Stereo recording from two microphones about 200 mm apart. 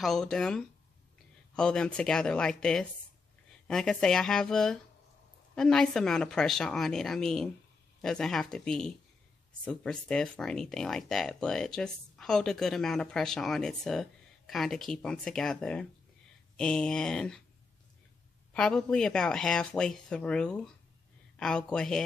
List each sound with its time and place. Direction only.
0.0 s speech: centre (ahead or behind)
18.5 s speech: 5° left (ahead or behind)